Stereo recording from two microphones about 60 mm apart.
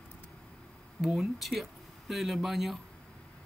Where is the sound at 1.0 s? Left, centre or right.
Centre.